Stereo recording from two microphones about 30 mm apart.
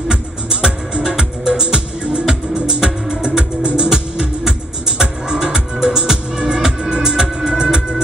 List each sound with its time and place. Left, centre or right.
0.1 s music: right
3.9 s music: right